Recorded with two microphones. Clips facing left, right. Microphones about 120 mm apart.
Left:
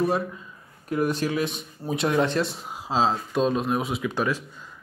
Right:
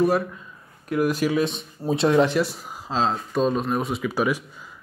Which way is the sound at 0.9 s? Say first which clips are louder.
Right 2 dB; 5° right (ahead or behind).